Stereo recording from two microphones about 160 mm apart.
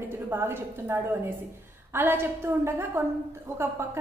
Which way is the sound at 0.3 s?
15° right (ahead or behind).